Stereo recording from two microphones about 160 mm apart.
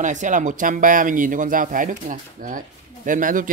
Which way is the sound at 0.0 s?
50° right (ahead or behind).